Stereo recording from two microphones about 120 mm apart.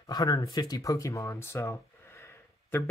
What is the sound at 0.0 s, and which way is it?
Speech, 30° left (ahead or behind).